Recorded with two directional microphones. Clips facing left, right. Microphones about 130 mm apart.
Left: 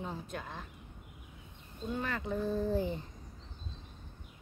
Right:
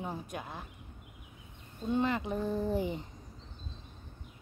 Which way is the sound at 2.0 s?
20° right (ahead or behind).